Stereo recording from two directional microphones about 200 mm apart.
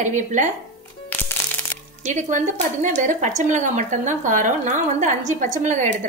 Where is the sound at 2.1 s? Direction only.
35° right (ahead or behind).